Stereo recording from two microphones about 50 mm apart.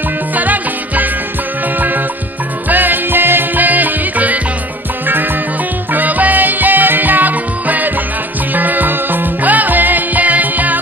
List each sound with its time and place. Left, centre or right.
0.4 s music: right
2.7 s music: right
5.9 s music: right